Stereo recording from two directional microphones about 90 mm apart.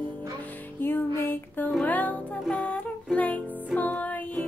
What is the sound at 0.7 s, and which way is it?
Music, 25° left (ahead or behind).